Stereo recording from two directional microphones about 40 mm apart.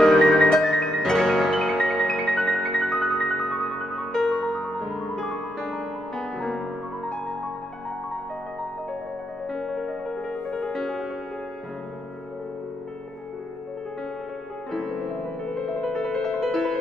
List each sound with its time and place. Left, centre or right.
0.0 s music: centre
4.1 s music: centre
9.5 s music: centre
14.7 s music: centre